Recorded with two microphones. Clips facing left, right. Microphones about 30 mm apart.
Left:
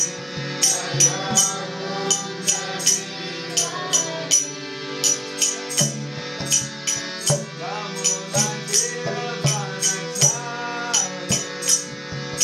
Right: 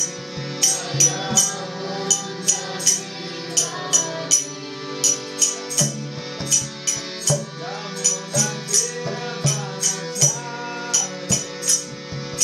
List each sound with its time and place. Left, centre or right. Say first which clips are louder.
0.6 s music: even; centre
2.0 s music: even; left
8.7 s music: left 1 dB; left
9.4 s music: even; left